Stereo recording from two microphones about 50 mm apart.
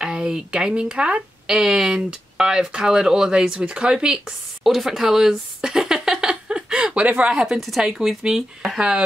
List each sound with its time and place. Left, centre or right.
0.0 s speech: centre
1.5 s speech: centre
4.6 s a sound: centre; by 7.3 s right
7.3 s speech: centre